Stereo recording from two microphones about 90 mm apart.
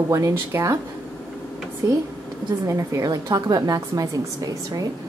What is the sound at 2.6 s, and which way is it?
A woman's voice, 35° right (ahead or behind).